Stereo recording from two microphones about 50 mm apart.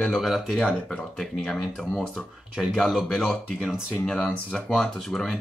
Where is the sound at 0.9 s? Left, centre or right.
Centre.